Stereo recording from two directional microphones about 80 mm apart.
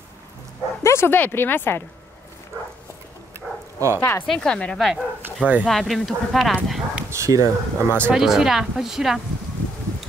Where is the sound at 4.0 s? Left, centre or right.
Left.